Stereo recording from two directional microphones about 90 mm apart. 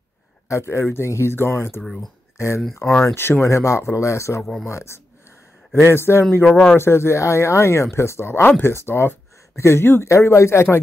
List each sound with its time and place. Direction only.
0.5 s speech: 30° left (ahead or behind)
4.4 s speech: 5° left (ahead or behind)
4.6 s speech: 30° left (ahead or behind)
6.4 s speech: 10° left (ahead or behind)
6.8 s speech: 30° left (ahead or behind)